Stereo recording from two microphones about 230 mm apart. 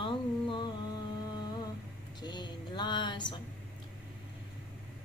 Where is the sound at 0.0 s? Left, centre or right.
Left.